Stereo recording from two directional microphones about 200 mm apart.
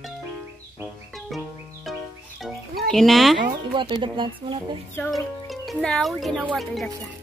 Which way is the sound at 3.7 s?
25° right (ahead or behind).